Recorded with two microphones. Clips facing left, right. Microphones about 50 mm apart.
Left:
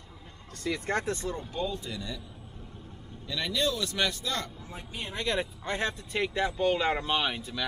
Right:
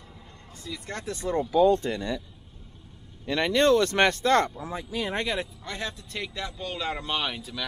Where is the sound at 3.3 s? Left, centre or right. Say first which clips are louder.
Right 9 dB; right.